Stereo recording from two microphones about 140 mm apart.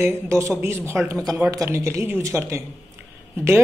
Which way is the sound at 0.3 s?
20° right (ahead or behind).